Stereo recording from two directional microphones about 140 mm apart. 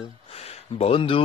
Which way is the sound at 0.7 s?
40° left (ahead or behind).